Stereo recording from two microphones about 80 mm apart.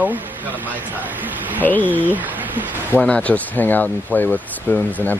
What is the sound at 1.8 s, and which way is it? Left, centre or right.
Speech, right.